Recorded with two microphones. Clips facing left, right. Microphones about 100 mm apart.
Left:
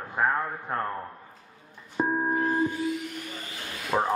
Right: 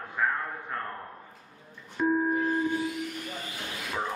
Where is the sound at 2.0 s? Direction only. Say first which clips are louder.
Right 1 dB; 40° left (ahead or behind).